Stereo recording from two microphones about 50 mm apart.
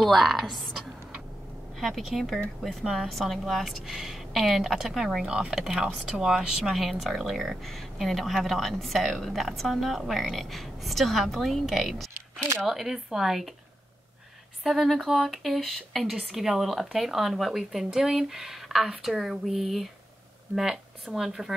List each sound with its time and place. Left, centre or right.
0.0 s speech: centre
5.2 s speech: centre
6.7 s speech: centre
12.4 s speech: right
12.6 s speech: centre
14.6 s speech: centre